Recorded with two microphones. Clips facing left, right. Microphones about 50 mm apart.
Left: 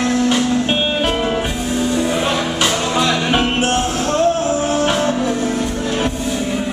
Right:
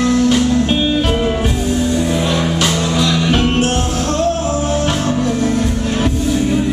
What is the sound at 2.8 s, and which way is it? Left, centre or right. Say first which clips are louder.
Music: right 1 dB; left.